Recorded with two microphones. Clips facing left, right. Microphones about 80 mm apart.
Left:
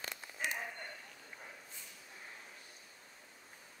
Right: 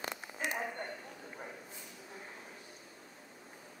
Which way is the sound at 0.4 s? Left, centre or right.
Centre.